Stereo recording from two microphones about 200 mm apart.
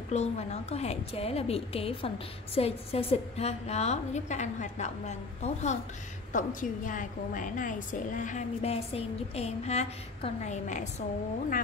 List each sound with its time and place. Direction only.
0.1 s a woman's voice: 30° left (ahead or behind)